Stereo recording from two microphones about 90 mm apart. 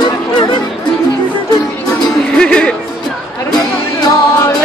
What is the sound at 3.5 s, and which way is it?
Music, 50° left (ahead or behind).